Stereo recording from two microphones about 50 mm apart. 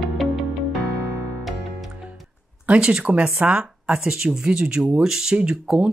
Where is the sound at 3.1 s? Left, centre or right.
Right.